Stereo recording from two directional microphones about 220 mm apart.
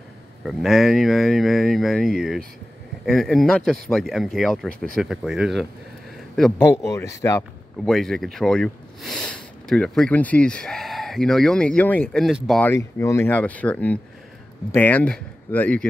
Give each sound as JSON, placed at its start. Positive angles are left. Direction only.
{"t": 0.5, "sound": "speech", "side_deg": 0}
{"t": 6.6, "sound": "speech", "side_deg": 15}
{"t": 7.8, "sound": "speech", "side_deg": 0}